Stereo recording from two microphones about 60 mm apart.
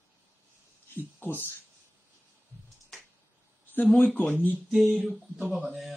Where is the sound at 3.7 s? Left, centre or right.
Left.